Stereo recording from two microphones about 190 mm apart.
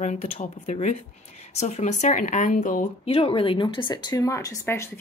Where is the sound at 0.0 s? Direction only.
40° left (ahead or behind).